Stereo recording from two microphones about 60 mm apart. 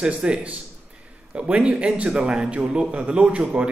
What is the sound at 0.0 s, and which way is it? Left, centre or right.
Speech, centre.